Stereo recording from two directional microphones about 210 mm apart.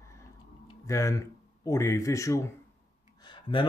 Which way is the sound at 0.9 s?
15° left (ahead or behind).